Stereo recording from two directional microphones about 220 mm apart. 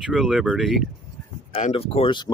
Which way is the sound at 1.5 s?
25° left (ahead or behind).